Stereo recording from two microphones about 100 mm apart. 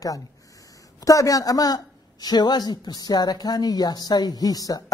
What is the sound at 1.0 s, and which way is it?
A man's voice, 35° left (ahead or behind).